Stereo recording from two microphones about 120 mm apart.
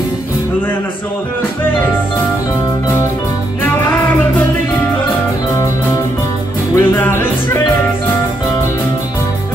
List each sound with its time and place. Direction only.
3.6 s music: 20° left (ahead or behind)
6.7 s music: 20° left (ahead or behind)